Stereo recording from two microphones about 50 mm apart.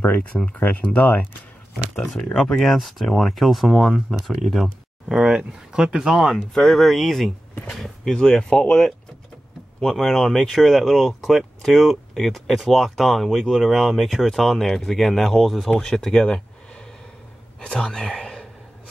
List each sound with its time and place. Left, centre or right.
0.3 s speech: left
2.1 s speech: centre
2.6 s speech: centre
6.3 s speech: centre
17.6 s speech: centre